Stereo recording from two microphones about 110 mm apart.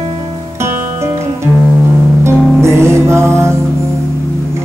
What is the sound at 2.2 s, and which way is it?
Music, 25° right (ahead or behind).